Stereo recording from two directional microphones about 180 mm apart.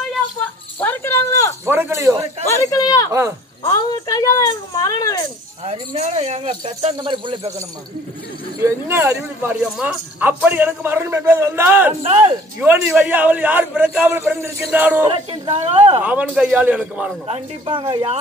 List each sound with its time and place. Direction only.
0.7 s speech: 10° left (ahead or behind)
1.7 s speech: 15° right (ahead or behind)
2.4 s speech: 15° left (ahead or behind)
3.1 s speech: 15° right (ahead or behind)
3.6 s speech: 20° left (ahead or behind)
5.7 s speech: 35° right (ahead or behind)
8.5 s speech: 15° right (ahead or behind)
12.0 s speech: 35° right (ahead or behind)
12.5 s speech: 10° right (ahead or behind)
15.0 s speech: 30° right (ahead or behind)
16.0 s speech: 10° right (ahead or behind)
17.3 s a woman's voice: 30° right (ahead or behind)